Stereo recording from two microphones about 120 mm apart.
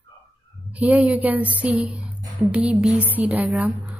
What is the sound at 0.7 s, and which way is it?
Speech, 10° right (ahead or behind).